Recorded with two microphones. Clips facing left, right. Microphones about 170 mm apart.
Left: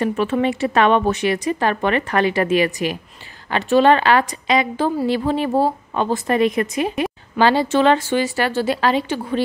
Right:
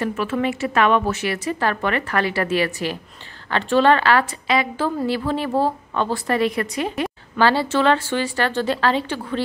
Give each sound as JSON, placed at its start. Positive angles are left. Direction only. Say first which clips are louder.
{"t": 0.0, "sound": "a woman's voice", "louder": "left 3 dB", "side_deg": 25}